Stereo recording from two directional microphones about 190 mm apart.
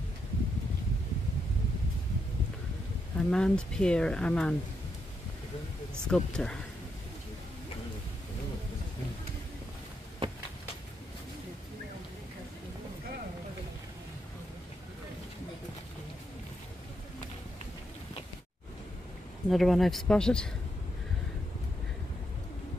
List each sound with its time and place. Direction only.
3.2 s speech: 5° left (ahead or behind)
6.0 s speech: 5° left (ahead or behind)
10.2 s a sound: 25° right (ahead or behind)
19.5 s speech: centre (ahead or behind)